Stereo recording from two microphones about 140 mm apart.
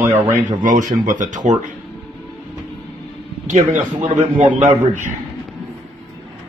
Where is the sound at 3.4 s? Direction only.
60° right (ahead or behind).